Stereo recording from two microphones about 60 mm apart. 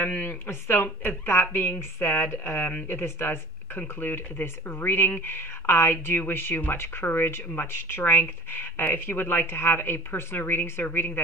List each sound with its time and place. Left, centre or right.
0.2 s speech: left